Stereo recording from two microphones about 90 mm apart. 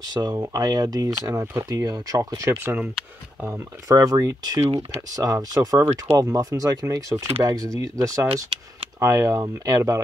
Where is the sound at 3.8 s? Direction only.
40° right (ahead or behind).